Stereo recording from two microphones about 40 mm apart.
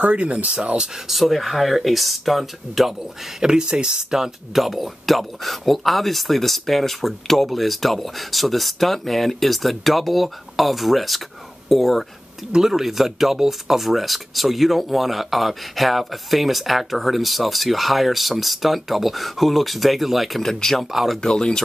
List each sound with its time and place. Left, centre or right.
0.0 s speech: right
0.6 s speech: right
1.0 s speech: centre
3.0 s speech: centre
4.6 s speech: centre
12.5 s speech: centre
20.4 s speech: centre
20.8 s speech: centre
21.2 s speech: centre